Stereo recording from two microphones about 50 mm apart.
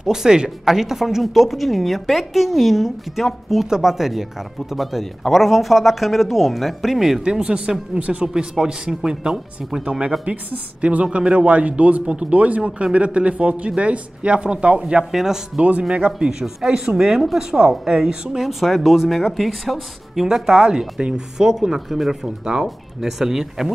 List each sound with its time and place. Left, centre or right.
0.0 s a woman's voice: centre
9.8 s speech: right
15.0 s a woman's voice: centre